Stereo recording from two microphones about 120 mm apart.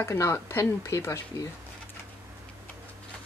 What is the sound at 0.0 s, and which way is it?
Speech, 20° left (ahead or behind).